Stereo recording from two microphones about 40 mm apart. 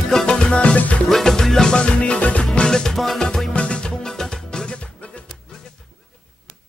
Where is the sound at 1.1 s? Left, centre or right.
Centre.